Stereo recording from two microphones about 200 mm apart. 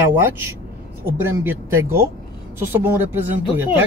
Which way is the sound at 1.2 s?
10° right (ahead or behind).